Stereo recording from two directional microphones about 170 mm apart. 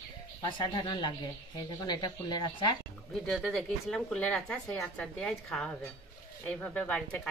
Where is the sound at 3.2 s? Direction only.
Centre (ahead or behind).